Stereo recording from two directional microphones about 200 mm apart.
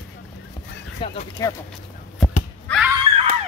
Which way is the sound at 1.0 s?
30° left (ahead or behind).